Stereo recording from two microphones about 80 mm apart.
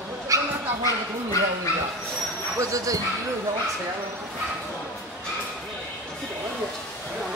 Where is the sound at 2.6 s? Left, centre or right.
Right.